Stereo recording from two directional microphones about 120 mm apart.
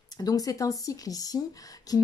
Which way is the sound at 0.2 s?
30° left (ahead or behind).